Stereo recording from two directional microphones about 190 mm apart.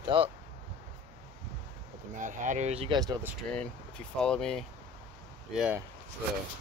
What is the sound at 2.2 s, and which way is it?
Speech, 40° right (ahead or behind).